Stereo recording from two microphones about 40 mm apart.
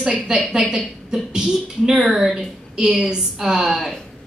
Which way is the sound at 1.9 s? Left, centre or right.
Centre.